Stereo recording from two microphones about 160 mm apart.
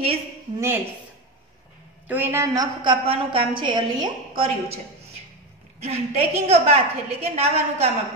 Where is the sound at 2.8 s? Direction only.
35° right (ahead or behind).